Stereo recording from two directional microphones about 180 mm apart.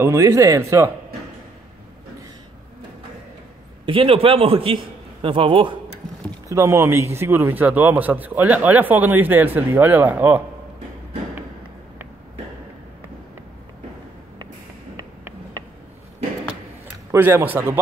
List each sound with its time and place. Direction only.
0.0 s a man's voice: 15° right (ahead or behind)
3.8 s a man's voice: 30° right (ahead or behind)
6.5 s a man's voice: 15° right (ahead or behind)
15.0 s a sound: 20° right (ahead or behind)
17.1 s a man's voice: 10° right (ahead or behind)